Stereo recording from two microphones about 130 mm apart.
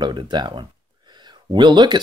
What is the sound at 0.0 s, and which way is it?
Speech, 35° right (ahead or behind).